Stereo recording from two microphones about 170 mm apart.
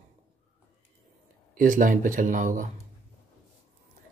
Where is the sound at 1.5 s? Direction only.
55° right (ahead or behind).